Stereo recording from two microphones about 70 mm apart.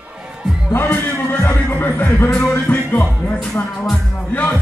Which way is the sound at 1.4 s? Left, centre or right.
Left.